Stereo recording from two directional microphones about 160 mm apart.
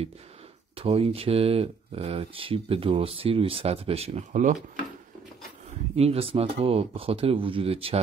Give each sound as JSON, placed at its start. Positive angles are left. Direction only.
{"t": 0.7, "sound": "speech", "side_deg": -35}
{"t": 5.9, "sound": "speech", "side_deg": -40}